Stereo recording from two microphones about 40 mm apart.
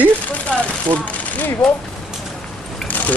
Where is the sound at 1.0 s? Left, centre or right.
Left.